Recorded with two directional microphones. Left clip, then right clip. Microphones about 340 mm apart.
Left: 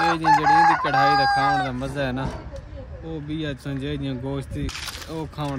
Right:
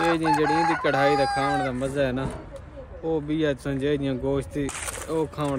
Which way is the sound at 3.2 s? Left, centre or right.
Centre.